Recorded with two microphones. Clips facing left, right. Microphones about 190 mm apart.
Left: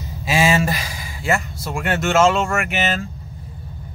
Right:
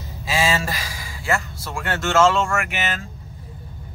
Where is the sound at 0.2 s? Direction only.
20° left (ahead or behind).